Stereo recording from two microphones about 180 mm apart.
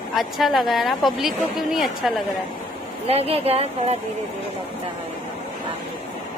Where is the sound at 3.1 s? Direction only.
35° right (ahead or behind).